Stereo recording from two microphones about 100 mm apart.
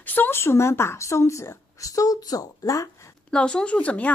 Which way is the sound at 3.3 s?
10° left (ahead or behind).